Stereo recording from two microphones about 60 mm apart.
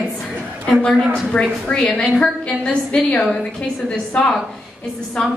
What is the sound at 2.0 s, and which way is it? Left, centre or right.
A woman's voice, centre.